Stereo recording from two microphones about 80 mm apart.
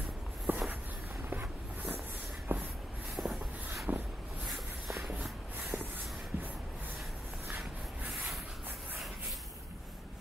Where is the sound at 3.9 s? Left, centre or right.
Right.